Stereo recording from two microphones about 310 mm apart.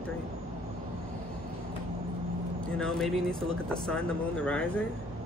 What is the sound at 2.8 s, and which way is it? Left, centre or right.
Speech, centre.